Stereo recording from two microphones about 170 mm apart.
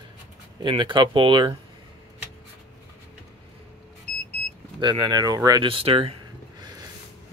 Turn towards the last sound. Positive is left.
turn(degrees=-35)  # may be behind; listen again after turning